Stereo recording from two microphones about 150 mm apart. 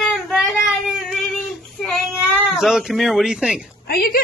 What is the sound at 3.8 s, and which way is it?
Speech, 85° left.